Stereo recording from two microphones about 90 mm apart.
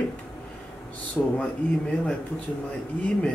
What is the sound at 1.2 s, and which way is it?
Speech, 15° left (ahead or behind).